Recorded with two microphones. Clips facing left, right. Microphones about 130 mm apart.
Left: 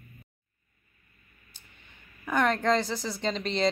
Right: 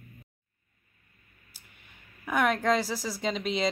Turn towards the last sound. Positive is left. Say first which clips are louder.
# even
turn(degrees=-5)  # may be behind; listen again after turning